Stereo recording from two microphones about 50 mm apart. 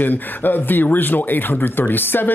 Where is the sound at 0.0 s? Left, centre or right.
Left.